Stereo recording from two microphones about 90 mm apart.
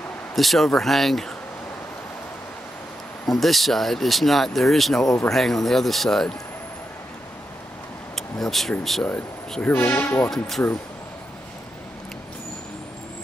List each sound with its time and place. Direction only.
0.4 s speech: centre (ahead or behind)
3.3 s speech: centre (ahead or behind)
8.2 s speech: 5° left (ahead or behind)
9.6 s speech: 20° left (ahead or behind)
10.3 s speech: centre (ahead or behind)